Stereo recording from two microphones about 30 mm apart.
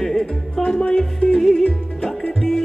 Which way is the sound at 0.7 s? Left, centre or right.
Left.